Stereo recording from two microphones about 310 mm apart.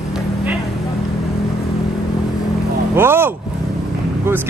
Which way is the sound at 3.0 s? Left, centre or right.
Centre.